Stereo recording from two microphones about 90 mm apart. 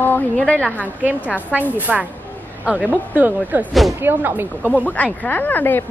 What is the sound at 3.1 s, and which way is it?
A woman's voice, 20° right (ahead or behind).